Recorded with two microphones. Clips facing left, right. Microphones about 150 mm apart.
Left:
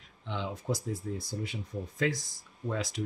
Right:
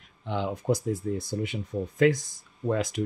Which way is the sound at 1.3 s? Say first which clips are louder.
Right 6 dB; 65° right (ahead or behind).